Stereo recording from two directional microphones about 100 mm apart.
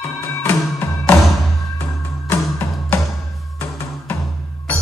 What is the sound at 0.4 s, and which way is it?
Music, 15° left (ahead or behind).